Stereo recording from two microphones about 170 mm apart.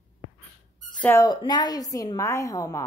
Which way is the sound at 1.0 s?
15° left (ahead or behind).